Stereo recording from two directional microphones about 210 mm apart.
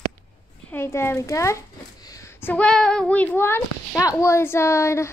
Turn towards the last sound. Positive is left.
turn(degrees=15)  # may be behind; listen again after turning